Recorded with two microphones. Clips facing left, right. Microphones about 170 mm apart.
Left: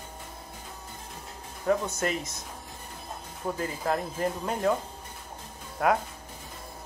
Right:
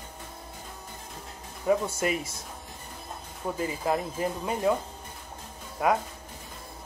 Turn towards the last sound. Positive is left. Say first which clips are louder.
# even
turn(degrees=0)  # may be behind; listen again after turning